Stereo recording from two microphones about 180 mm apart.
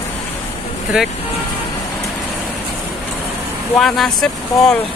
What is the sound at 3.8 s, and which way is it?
Speech, centre (ahead or behind).